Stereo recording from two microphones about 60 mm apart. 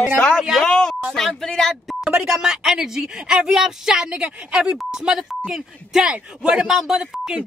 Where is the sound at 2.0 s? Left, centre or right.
Centre.